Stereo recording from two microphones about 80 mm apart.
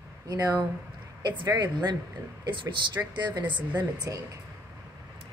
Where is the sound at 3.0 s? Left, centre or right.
Right.